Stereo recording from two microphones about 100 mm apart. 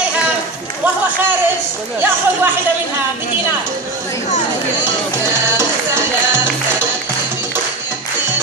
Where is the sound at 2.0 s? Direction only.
25° right (ahead or behind).